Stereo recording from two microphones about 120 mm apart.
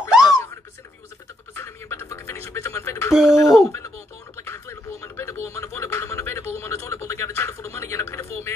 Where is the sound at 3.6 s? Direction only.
25° left (ahead or behind).